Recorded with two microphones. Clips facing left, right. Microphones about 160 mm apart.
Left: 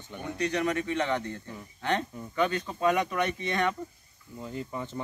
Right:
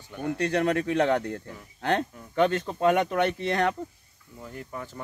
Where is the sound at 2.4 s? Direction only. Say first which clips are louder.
Right 4 dB; 50° right (ahead or behind).